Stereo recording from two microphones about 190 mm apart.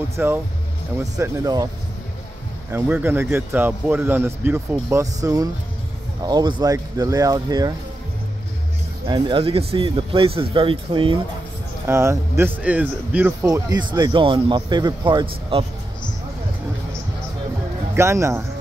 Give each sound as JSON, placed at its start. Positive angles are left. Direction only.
{"t": 0.1, "sound": "speech", "side_deg": -10}
{"t": 2.7, "sound": "a man's voice", "side_deg": -10}
{"t": 9.0, "sound": "speech", "side_deg": -25}
{"t": 11.8, "sound": "speech", "side_deg": -15}
{"t": 17.9, "sound": "a man's voice", "side_deg": -15}